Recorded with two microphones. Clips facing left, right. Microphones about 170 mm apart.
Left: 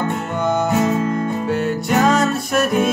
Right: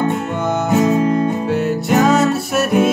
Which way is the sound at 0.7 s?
15° right (ahead or behind).